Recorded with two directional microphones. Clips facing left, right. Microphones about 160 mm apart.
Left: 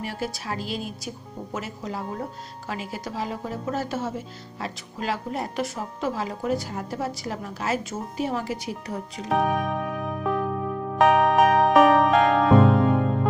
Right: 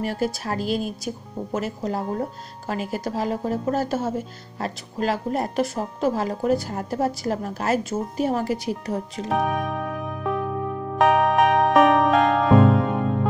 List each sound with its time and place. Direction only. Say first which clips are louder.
0.0 s a woman's voice: right 6 dB; 45° right (ahead or behind)
9.3 s music: left 1 dB; centre (ahead or behind)